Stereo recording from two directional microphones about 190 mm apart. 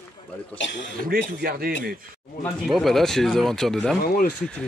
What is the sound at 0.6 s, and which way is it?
Speech, 75° left (ahead or behind).